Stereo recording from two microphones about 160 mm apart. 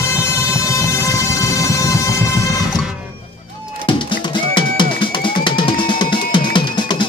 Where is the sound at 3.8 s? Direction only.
30° left (ahead or behind).